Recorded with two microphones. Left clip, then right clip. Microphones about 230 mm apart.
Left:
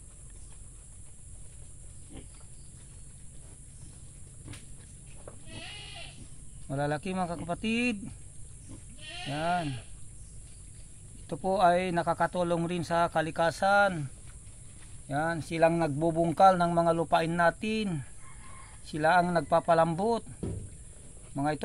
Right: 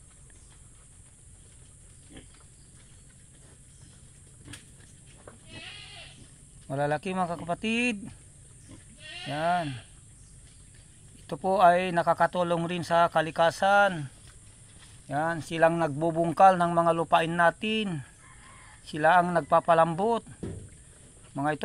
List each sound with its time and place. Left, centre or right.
6.7 s speech: centre
9.3 s speech: centre
11.2 s speech: centre
21.4 s speech: centre